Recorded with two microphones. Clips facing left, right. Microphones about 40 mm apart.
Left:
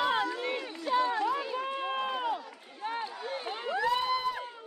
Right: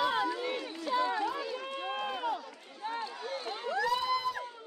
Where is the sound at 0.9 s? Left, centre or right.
Left.